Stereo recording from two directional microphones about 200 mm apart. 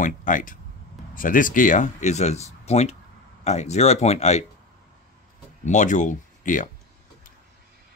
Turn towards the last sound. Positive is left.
turn(degrees=40)  # may be behind; listen again after turning